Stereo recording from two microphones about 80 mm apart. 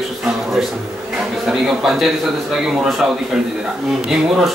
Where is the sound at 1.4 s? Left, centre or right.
Centre.